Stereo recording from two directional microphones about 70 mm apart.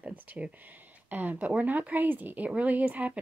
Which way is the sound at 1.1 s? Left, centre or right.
Right.